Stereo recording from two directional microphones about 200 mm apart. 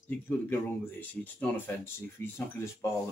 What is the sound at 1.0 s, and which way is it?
Speech, 10° left (ahead or behind).